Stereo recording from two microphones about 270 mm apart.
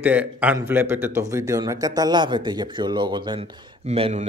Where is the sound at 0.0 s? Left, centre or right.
Centre.